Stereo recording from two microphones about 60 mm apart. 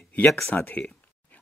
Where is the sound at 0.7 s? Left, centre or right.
Left.